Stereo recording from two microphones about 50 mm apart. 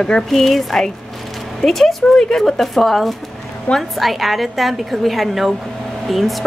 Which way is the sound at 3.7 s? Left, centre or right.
Left.